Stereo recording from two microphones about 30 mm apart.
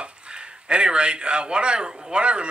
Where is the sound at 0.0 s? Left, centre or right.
Right.